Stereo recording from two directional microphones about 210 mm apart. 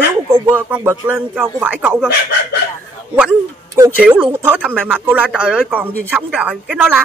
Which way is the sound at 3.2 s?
5° right (ahead or behind).